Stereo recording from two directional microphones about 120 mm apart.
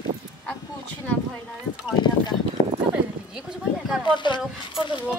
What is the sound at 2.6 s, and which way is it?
Clip-clop, 65° left (ahead or behind).